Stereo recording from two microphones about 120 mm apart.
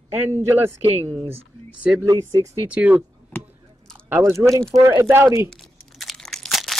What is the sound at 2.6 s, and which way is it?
Speech, 10° right (ahead or behind).